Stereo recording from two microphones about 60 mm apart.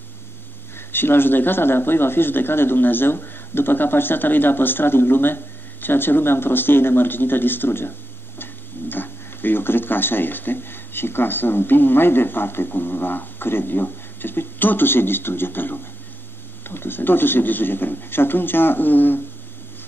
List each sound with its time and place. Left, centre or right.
0.7 s speech: left